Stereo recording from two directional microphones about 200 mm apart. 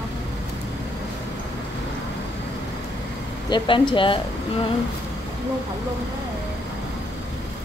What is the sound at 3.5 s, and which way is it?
Speech, 25° left (ahead or behind).